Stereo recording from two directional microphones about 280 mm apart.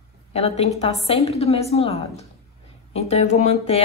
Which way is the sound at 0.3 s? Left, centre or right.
Left.